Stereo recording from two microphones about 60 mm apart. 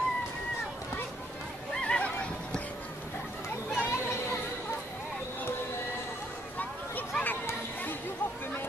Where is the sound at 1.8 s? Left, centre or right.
Centre.